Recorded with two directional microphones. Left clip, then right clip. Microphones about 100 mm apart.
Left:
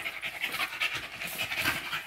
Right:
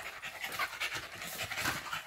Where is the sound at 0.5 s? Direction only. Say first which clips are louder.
Left 3 dB; 65° right (ahead or behind).